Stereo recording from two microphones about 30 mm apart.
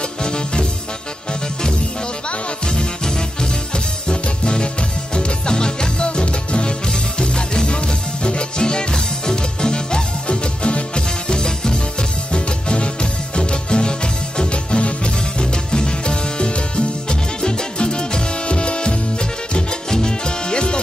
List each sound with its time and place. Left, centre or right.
0.2 s music: left
3.7 s music: left
15.3 s music: left